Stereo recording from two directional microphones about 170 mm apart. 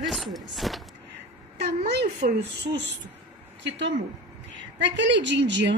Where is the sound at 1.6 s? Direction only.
75° right (ahead or behind).